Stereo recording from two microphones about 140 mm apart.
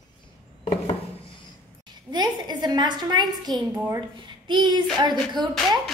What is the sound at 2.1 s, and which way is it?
A woman's voice, 30° right (ahead or behind).